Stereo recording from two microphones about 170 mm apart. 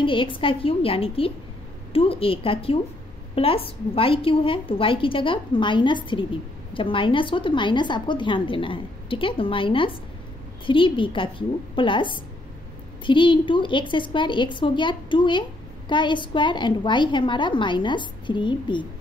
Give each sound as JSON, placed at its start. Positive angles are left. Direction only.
{"t": 0.0, "sound": "a woman's voice", "side_deg": 30}